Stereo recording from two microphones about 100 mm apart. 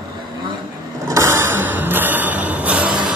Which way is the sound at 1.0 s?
30° right (ahead or behind).